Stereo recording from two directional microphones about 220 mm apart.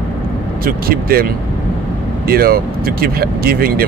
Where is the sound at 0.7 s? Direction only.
45° right (ahead or behind).